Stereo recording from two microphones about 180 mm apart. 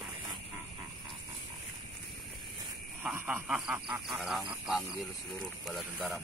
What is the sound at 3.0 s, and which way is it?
Speech, 10° right (ahead or behind).